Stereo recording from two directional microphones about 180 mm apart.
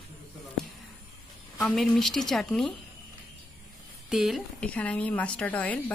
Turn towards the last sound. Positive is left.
turn(degrees=10)  # may be behind; listen again after turning